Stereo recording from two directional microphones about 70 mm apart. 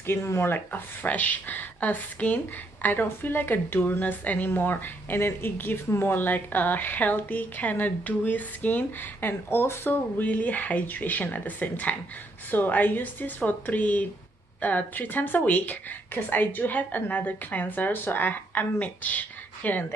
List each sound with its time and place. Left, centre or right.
0.0 s speech: left